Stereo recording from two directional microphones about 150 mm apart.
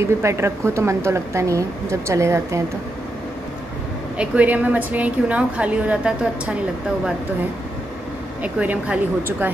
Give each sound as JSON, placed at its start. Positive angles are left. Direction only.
{"t": 0.0, "sound": "speech", "side_deg": -20}
{"t": 4.2, "sound": "a woman's voice", "side_deg": -10}
{"t": 8.4, "sound": "a woman's voice", "side_deg": -10}